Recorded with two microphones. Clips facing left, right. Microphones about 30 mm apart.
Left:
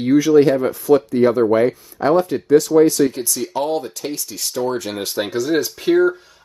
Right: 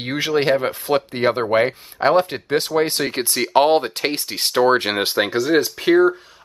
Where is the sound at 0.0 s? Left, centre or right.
Right.